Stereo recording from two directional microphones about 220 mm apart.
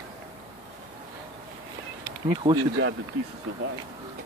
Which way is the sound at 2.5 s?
20° right (ahead or behind).